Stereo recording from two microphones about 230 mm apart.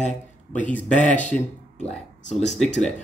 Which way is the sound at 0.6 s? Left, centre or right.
Centre.